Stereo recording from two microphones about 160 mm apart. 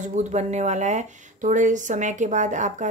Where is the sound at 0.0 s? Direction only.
45° right (ahead or behind).